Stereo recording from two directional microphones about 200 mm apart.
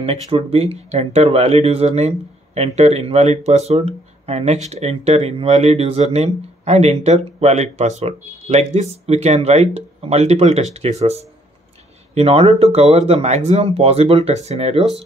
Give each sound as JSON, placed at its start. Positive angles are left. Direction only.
{"t": 0.0, "sound": "speech", "side_deg": -30}